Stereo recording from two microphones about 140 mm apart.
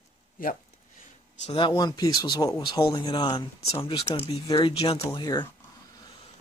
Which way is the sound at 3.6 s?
45° left (ahead or behind).